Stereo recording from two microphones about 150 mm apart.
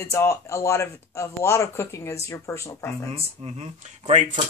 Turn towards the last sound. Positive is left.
turn(degrees=-50)  # may be behind; listen again after turning